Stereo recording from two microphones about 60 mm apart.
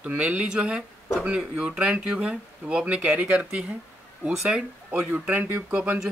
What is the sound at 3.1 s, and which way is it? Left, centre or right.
Speech, right.